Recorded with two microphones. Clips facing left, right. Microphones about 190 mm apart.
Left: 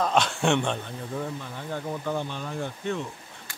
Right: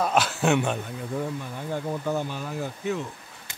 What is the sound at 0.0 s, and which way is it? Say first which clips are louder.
Speech: even; 5° right (ahead or behind).